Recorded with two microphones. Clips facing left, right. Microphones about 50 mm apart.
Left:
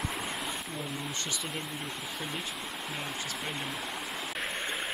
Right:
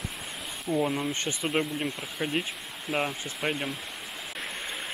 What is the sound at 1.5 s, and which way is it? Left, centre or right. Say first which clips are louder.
Speech: right 9 dB; right.